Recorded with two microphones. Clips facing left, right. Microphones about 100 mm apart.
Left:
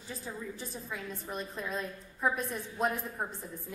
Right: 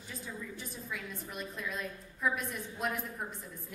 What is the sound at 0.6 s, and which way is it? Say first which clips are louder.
A woman's voice: left 2 dB; 30° left (ahead or behind).